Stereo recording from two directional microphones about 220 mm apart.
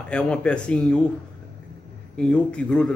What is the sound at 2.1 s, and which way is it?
Speech, 5° left (ahead or behind).